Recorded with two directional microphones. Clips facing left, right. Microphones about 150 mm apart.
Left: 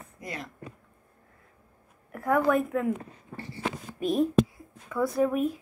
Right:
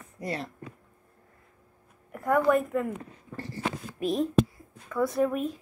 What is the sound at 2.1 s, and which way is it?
Speech, centre (ahead or behind).